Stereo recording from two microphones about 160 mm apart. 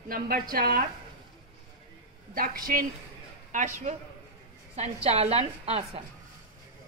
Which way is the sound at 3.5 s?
50° right (ahead or behind).